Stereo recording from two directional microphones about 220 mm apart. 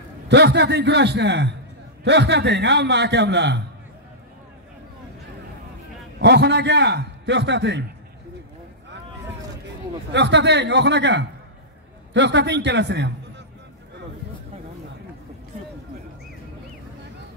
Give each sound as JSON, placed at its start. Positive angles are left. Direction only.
{"t": 0.3, "sound": "a man's voice", "side_deg": -50}
{"t": 6.1, "sound": "a man's voice", "side_deg": -50}
{"t": 10.1, "sound": "a man's voice", "side_deg": -50}